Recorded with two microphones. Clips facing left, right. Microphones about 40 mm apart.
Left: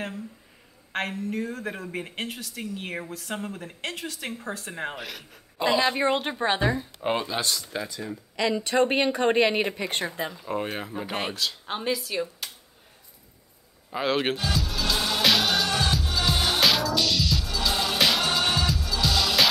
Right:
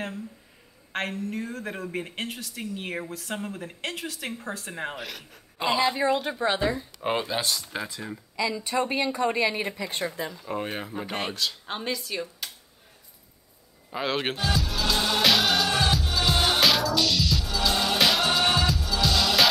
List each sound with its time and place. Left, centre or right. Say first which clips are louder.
0.9 s speech: left 1 dB; centre
5.9 s speech: even; left
7.0 s speech: even; centre
8.4 s speech: left 4 dB; left
10.0 s speech: even; left
10.3 s speech: left 1 dB; centre
13.8 s music: left 3 dB; centre